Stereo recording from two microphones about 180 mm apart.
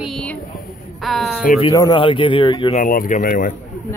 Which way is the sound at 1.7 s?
25° left (ahead or behind).